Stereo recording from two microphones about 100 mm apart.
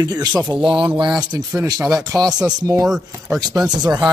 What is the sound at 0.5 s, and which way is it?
Speech, 55° right (ahead or behind).